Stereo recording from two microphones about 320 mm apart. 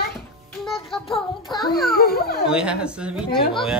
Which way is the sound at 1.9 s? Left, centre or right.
Left.